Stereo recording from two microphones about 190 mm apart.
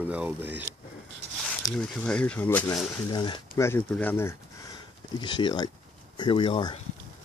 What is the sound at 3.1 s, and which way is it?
Speech, 25° left (ahead or behind).